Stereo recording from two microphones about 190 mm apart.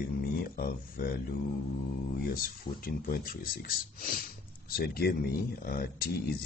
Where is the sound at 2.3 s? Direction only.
50° left (ahead or behind).